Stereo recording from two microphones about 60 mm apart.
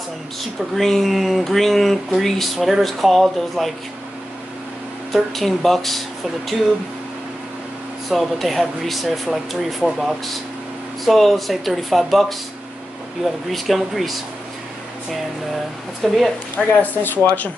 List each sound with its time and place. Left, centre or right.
0.4 s speech: centre
5.1 s speech: centre
8.1 s speech: centre
13.5 s speech: centre
16.0 s speech: centre
16.5 s speech: left